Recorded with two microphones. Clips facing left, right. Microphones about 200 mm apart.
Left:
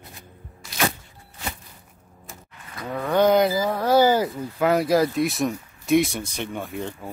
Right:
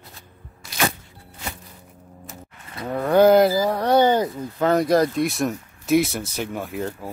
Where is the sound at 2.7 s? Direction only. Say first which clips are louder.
Right 4 dB; 20° right (ahead or behind).